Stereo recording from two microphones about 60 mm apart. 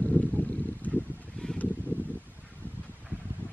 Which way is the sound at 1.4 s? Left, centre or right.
Centre.